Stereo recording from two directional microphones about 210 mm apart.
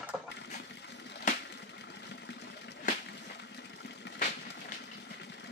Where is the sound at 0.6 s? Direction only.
55° left (ahead or behind).